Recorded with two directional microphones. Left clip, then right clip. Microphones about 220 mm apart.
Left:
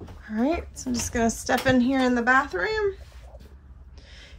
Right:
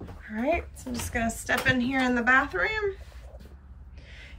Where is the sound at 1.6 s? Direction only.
15° left (ahead or behind).